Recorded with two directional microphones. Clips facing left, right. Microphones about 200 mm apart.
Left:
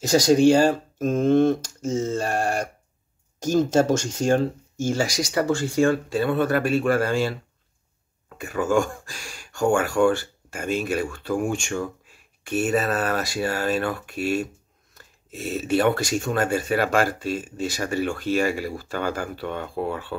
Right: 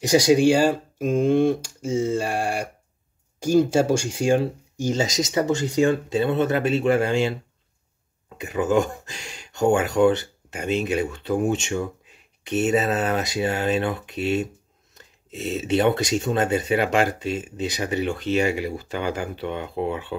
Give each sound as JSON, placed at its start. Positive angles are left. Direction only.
{"t": 0.0, "sound": "speech", "side_deg": -15}
{"t": 8.4, "sound": "speech", "side_deg": -20}